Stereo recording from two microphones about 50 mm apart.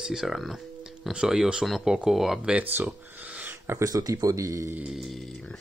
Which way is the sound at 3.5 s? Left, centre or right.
Right.